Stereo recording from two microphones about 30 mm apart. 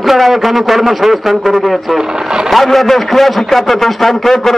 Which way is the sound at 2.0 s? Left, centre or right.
Right.